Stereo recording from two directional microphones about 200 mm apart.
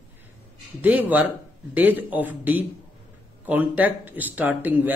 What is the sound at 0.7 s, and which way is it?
A man's voice, 10° right (ahead or behind).